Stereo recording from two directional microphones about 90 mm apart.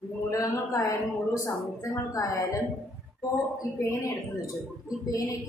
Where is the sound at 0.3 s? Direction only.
40° left (ahead or behind).